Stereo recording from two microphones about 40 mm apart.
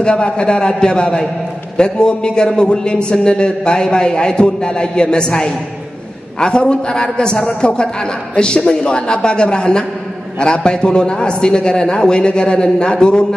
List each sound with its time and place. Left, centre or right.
0.0 s a man's voice: left
6.4 s a man's voice: left